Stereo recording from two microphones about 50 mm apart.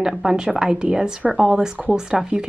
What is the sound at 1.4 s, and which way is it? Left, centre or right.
Speech, centre.